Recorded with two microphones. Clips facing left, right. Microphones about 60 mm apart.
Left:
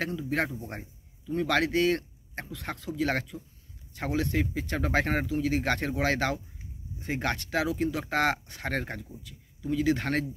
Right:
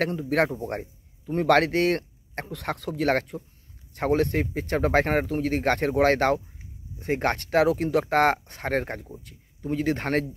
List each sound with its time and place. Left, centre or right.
0.0 s a man's voice: right